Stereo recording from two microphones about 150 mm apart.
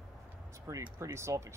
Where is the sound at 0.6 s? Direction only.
20° right (ahead or behind).